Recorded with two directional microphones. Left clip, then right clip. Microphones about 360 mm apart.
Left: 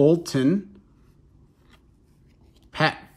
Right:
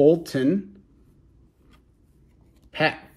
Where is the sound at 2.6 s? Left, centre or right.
Centre.